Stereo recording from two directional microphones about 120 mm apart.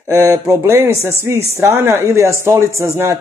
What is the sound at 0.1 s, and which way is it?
A man's voice, 25° right (ahead or behind).